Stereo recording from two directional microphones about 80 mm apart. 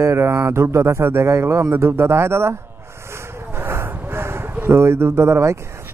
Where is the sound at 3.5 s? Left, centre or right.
Right.